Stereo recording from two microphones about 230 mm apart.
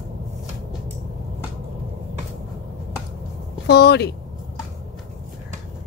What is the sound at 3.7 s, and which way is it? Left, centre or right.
Speech, left.